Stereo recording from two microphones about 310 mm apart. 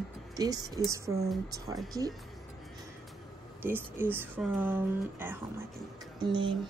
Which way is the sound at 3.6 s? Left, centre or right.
Centre.